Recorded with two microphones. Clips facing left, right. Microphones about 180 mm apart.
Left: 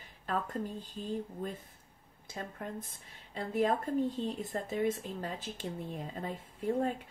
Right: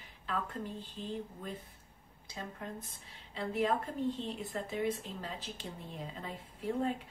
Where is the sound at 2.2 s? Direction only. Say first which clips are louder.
Left 2 dB; 50° left (ahead or behind).